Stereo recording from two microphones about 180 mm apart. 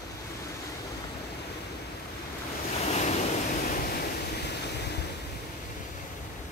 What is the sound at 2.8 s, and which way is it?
Waves, 40° left (ahead or behind).